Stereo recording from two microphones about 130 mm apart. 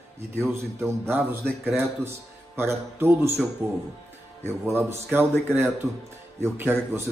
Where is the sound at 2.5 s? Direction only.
20° right (ahead or behind).